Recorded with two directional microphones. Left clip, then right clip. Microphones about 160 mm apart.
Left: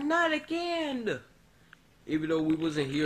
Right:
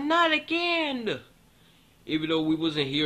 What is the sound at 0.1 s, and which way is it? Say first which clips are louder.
A man's voice: right 5 dB; 10° left (ahead or behind).